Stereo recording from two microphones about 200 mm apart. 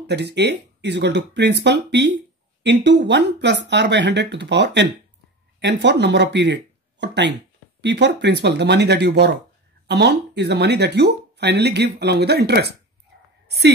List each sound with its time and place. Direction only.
0.0 s speech: 60° right (ahead or behind)